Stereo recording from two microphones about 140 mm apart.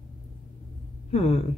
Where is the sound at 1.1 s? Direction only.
45° left (ahead or behind).